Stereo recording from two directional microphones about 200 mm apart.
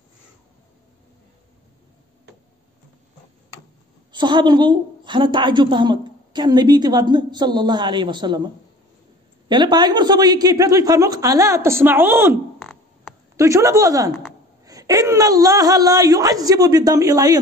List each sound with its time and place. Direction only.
4.1 s a woman's voice: 20° right (ahead or behind)
9.5 s speech: 20° right (ahead or behind)
12.5 s a sound: centre (ahead or behind)
13.4 s speech: 15° right (ahead or behind)